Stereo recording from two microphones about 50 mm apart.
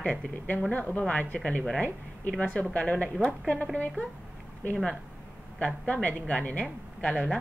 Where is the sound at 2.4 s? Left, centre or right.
Left.